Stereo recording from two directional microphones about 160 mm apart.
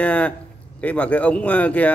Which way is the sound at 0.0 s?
10° left (ahead or behind).